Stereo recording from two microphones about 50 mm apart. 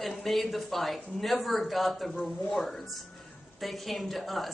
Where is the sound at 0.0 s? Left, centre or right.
Centre.